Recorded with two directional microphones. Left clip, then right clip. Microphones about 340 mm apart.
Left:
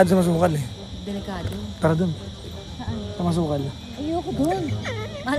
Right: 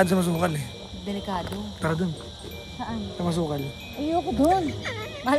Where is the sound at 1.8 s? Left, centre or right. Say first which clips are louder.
Left 6 dB; centre.